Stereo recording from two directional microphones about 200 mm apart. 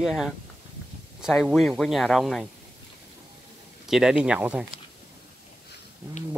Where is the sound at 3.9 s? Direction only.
Centre (ahead or behind).